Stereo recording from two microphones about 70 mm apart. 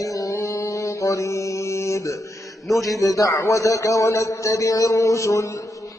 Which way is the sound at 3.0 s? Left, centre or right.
Left.